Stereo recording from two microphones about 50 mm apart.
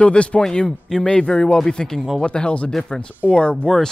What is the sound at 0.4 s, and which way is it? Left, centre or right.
Speech, centre.